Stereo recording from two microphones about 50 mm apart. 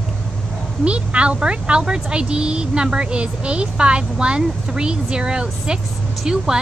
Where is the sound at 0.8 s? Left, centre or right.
Right.